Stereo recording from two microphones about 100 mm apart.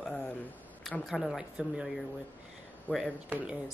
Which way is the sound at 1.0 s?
Centre (ahead or behind).